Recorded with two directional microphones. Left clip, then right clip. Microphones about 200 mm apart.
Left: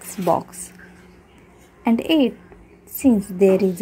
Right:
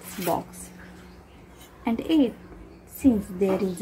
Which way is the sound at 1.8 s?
35° left (ahead or behind).